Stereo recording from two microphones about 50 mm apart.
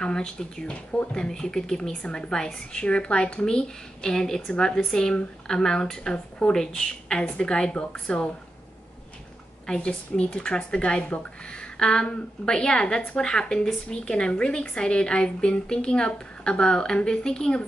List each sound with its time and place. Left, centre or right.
0.0 s a woman's voice: centre
9.7 s a woman's voice: centre